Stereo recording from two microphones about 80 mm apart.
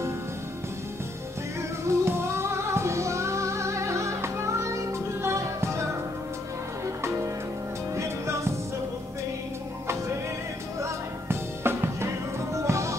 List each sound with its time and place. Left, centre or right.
1.9 s music: right
7.9 s music: right
10.8 s music: right